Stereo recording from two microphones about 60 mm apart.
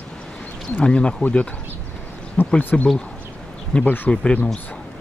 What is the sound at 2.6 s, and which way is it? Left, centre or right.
Speech, left.